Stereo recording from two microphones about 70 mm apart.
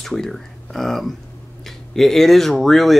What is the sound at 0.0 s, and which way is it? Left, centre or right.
Speech, centre.